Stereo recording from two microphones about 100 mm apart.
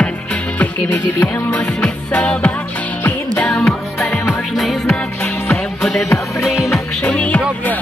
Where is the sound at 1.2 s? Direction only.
10° left (ahead or behind).